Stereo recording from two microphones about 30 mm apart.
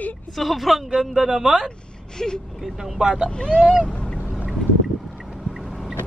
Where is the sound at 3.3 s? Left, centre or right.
Left.